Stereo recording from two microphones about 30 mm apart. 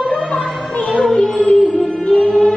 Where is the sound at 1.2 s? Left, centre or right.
Left.